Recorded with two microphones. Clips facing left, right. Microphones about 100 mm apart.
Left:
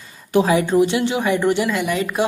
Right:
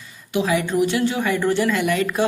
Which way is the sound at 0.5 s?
25° left (ahead or behind).